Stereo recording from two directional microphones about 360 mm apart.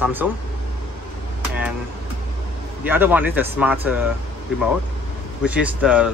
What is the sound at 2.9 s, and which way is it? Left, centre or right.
Speech, centre.